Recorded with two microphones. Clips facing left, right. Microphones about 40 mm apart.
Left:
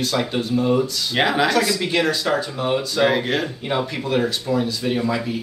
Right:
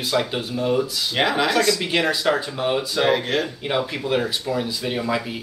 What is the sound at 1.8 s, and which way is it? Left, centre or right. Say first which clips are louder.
Speech: even; centre.